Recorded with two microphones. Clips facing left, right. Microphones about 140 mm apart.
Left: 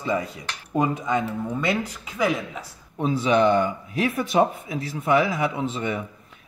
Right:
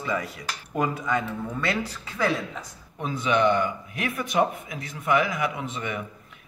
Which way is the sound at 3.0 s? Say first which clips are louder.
Left 4 dB; 35° left (ahead or behind).